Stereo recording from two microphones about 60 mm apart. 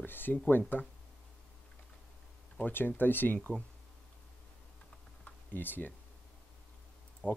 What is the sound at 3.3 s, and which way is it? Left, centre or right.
Speech, centre.